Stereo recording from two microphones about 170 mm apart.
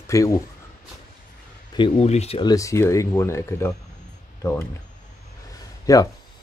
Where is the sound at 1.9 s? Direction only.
40° left (ahead or behind).